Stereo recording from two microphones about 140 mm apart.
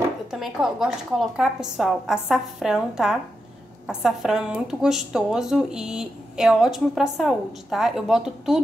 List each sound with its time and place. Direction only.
0.3 s speech: 5° right (ahead or behind)